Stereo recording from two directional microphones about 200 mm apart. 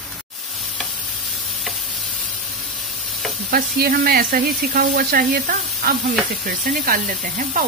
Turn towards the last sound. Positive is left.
turn(degrees=-45)  # may be behind; listen again after turning